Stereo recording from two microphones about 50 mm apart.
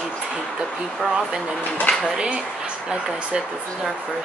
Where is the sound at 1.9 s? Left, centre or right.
Left.